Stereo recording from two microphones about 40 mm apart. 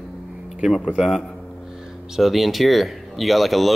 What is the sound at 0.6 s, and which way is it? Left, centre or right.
Speech, centre.